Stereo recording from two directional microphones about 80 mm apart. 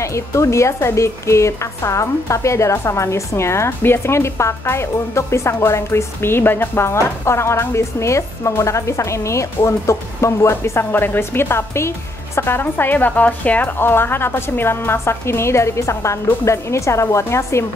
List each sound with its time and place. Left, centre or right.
0.0 s speech: left